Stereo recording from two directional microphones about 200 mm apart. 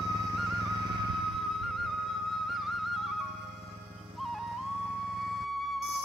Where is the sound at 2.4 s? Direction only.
Centre (ahead or behind).